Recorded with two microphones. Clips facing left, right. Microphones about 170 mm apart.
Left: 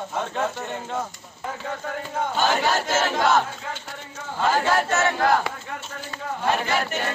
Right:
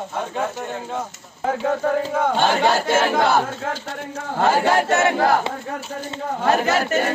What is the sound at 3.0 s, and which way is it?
Choir, 55° right (ahead or behind).